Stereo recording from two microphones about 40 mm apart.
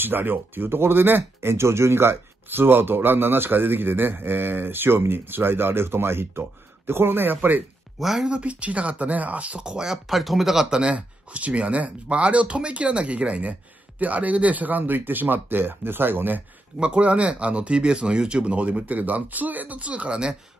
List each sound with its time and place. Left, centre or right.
0.0 s speech: right
8.0 s speech: centre
8.3 s speech: right
9.6 s speech: right
10.0 s speech: centre
10.7 s speech: right
11.0 s speech: right
16.8 s speech: right